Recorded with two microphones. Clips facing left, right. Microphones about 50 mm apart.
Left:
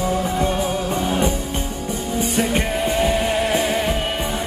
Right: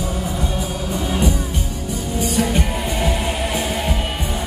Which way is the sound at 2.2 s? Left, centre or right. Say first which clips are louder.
Right 1 dB; left.